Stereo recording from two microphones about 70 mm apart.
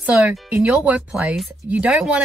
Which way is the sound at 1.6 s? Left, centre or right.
Centre.